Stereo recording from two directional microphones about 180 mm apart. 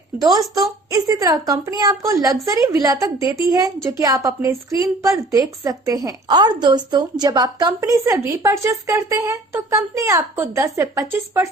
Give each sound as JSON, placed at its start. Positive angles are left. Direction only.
{"t": 0.2, "sound": "a woman's voice", "side_deg": -20}